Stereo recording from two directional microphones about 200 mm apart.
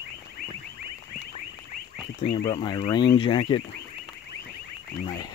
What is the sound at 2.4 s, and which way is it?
Speech, 20° left (ahead or behind).